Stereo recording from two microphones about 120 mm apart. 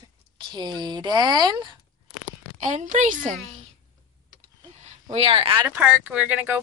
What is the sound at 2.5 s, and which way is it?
Speech, 90° right.